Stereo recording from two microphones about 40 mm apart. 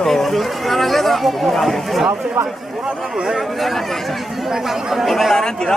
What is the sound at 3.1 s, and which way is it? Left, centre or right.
Speech, centre.